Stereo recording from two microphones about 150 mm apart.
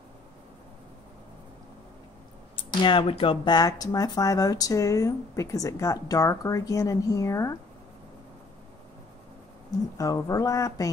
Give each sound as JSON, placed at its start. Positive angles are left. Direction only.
{"t": 2.5, "sound": "speech", "side_deg": 35}
{"t": 9.9, "sound": "speech", "side_deg": 20}